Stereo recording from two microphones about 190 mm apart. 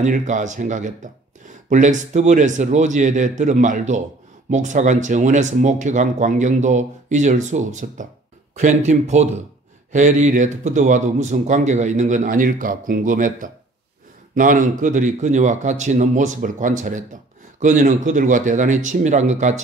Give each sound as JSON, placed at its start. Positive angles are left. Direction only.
{"t": 0.0, "sound": "speech", "side_deg": -40}